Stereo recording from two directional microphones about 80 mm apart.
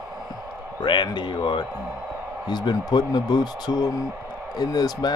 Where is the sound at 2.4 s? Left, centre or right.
Left.